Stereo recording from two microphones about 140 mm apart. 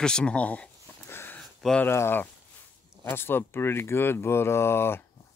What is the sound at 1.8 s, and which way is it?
Speech, 15° left (ahead or behind).